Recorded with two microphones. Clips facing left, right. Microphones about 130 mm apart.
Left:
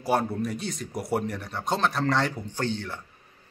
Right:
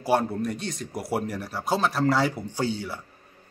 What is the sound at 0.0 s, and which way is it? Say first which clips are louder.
A man's voice: right 2 dB; centre (ahead or behind).